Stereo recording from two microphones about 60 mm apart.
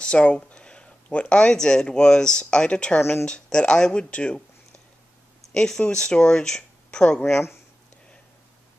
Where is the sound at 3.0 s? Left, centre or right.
Left.